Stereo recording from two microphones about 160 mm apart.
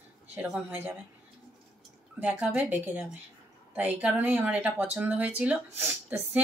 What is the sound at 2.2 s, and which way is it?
Speech, 10° right (ahead or behind).